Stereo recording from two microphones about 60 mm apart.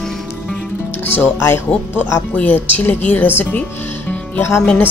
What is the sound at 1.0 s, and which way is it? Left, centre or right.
Speech, left.